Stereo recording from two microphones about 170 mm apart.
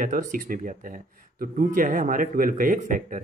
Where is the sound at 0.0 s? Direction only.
50° right (ahead or behind).